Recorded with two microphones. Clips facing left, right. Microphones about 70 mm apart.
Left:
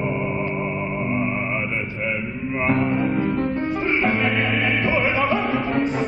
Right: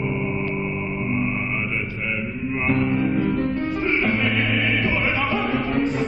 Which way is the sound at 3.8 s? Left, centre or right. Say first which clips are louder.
Left 1 dB; centre.